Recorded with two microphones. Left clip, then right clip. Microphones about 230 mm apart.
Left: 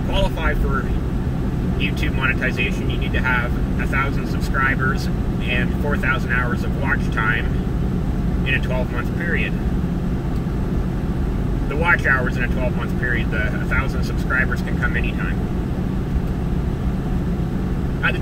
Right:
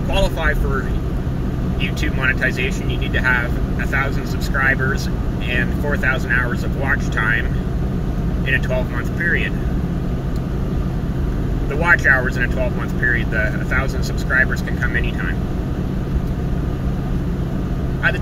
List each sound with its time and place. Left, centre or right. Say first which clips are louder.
5.5 s speech: right 2 dB; right
11.8 s speech: right 3 dB; right